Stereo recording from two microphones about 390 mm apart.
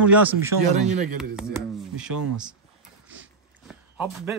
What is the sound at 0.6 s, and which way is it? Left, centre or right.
Speech, right.